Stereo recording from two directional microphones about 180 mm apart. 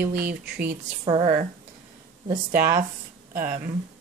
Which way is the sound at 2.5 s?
50° right (ahead or behind).